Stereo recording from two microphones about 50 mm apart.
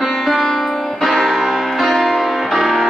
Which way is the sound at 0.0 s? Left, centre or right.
Centre.